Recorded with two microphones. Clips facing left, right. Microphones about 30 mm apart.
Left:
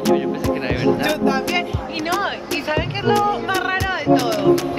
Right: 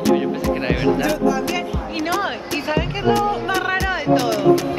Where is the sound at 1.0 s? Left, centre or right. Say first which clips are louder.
Even; left.